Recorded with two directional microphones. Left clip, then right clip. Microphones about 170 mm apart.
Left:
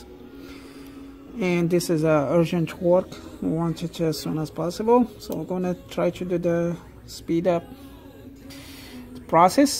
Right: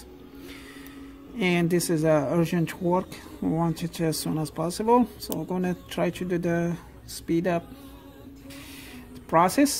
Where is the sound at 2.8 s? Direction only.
20° right (ahead or behind).